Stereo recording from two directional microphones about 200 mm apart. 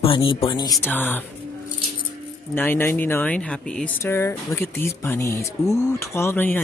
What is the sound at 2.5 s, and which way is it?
Speech, 10° left (ahead or behind).